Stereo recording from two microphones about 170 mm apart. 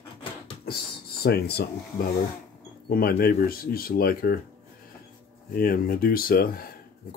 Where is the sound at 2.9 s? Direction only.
60° left (ahead or behind).